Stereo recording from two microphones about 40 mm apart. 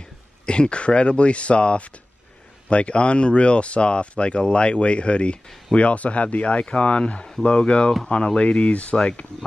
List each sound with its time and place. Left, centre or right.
0.5 s speech: left